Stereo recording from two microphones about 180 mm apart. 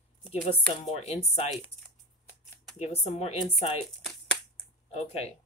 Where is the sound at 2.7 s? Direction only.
35° left (ahead or behind).